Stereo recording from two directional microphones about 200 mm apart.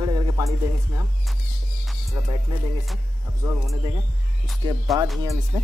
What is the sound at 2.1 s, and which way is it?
Speech, 25° right (ahead or behind).